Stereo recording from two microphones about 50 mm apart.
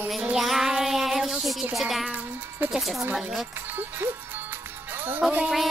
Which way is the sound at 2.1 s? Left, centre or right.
Right.